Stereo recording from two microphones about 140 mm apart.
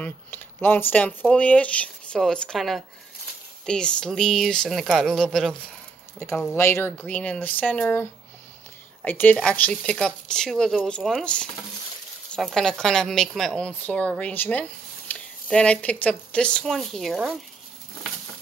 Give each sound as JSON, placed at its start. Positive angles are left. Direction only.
{"t": 0.0, "sound": "a woman's voice", "side_deg": 15}
{"t": 6.1, "sound": "a woman's voice", "side_deg": 15}